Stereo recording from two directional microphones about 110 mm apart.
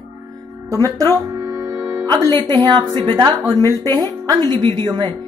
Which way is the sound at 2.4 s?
40° right (ahead or behind).